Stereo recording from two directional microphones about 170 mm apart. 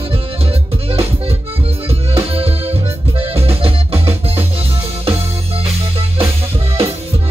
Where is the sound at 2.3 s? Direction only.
35° right (ahead or behind).